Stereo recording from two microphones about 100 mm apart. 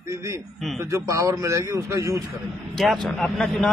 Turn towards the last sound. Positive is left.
turn(degrees=5)  # may be behind; listen again after turning